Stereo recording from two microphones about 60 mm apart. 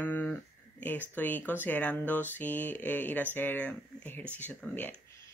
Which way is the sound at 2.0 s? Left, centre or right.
Left.